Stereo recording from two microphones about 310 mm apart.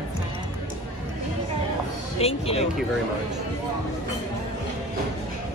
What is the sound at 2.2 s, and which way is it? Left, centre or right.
Speech, centre.